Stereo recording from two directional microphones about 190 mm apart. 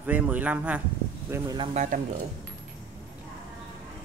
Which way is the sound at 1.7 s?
40° right (ahead or behind).